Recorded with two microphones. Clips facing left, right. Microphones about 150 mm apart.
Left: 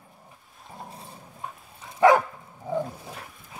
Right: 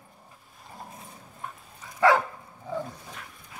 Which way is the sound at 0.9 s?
30° left (ahead or behind).